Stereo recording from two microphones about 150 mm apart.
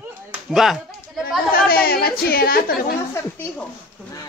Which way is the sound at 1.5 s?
85° left.